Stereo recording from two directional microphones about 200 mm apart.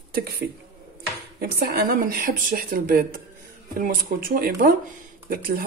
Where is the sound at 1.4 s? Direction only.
50° right (ahead or behind).